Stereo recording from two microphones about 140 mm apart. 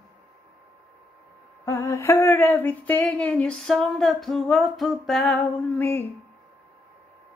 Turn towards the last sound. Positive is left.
turn(degrees=15)  # may be behind; listen again after turning